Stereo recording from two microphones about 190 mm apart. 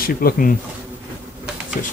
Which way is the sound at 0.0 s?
50° left (ahead or behind).